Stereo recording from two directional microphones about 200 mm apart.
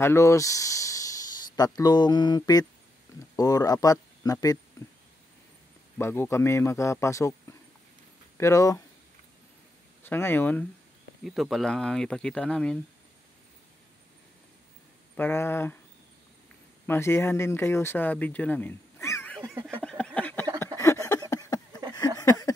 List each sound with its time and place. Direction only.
0.0 s speech: 15° left (ahead or behind)
5.9 s speech: 10° left (ahead or behind)
8.4 s speech: 15° left (ahead or behind)
10.0 s speech: 10° left (ahead or behind)
11.2 s speech: centre (ahead or behind)
15.1 s speech: 10° left (ahead or behind)
16.8 s speech: 10° left (ahead or behind)
19.4 s a sound: 15° right (ahead or behind)
19.8 s a sound: 5° left (ahead or behind)